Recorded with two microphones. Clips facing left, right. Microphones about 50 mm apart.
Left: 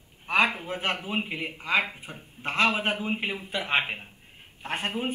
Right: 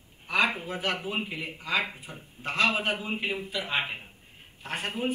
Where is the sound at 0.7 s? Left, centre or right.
Left.